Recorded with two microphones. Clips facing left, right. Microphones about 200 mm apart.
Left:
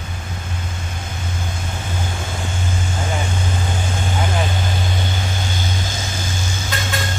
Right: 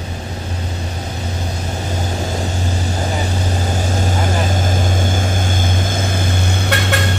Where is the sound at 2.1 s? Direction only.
40° right (ahead or behind); by 7.1 s 65° right (ahead or behind).